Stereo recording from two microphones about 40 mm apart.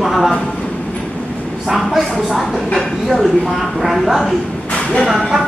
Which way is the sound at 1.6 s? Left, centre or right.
Centre.